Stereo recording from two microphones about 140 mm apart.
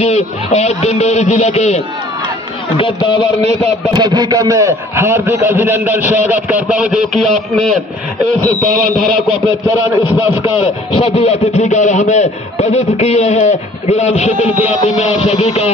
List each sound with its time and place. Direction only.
0.0 s speech: 50° left (ahead or behind)
2.8 s a man's voice: 35° left (ahead or behind)
4.0 s a man's voice: 25° right (ahead or behind); by 9.2 s centre (ahead or behind)
9.7 s a man's voice: 20° right (ahead or behind)
10.6 s speech: 40° left (ahead or behind)